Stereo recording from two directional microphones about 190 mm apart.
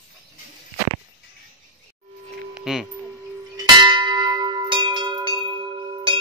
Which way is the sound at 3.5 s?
25° right (ahead or behind).